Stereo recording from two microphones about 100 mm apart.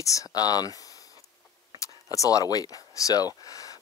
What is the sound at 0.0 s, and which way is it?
Speech, 35° left (ahead or behind).